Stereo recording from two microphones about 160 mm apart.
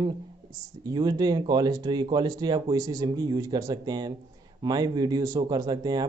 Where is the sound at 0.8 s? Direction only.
25° right (ahead or behind).